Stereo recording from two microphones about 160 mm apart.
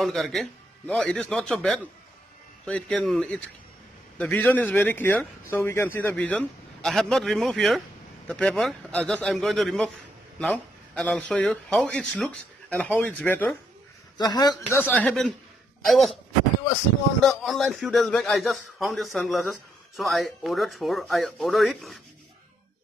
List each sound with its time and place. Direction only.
0.0 s a man's voice: centre (ahead or behind)
14.1 s a man's voice: 25° left (ahead or behind)
14.8 s speech: 10° left (ahead or behind)
17.3 s a man's voice: centre (ahead or behind)